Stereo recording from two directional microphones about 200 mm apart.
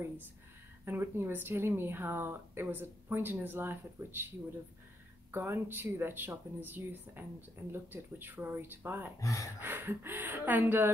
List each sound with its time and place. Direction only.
0.8 s speech: 10° right (ahead or behind)
5.3 s speech: 10° right (ahead or behind)
9.2 s speech: 15° left (ahead or behind)
9.6 s speech: 10° right (ahead or behind)